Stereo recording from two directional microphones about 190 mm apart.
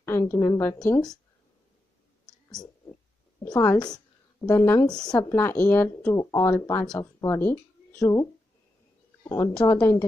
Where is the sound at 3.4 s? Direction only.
10° left (ahead or behind).